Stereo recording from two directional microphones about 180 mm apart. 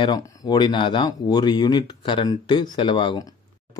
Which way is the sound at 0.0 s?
25° left (ahead or behind).